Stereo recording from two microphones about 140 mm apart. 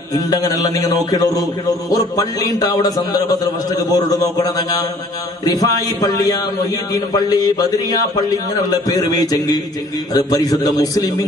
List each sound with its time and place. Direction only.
0.1 s a man's voice: 25° left (ahead or behind)